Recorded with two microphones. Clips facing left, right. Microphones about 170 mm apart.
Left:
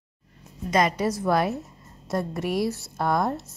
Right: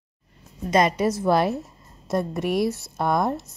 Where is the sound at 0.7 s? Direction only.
25° right (ahead or behind).